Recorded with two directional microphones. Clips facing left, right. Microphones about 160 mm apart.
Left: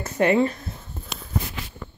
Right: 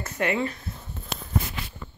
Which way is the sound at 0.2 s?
35° left (ahead or behind).